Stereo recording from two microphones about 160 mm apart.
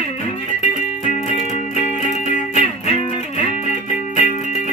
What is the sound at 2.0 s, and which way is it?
Music, 50° left (ahead or behind).